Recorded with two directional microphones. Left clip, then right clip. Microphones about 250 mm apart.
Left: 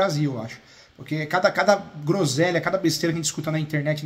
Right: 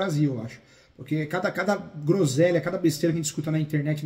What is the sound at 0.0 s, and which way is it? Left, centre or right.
Speech, centre.